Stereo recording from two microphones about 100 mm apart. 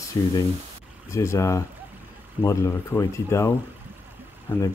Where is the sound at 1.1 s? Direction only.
30° left (ahead or behind).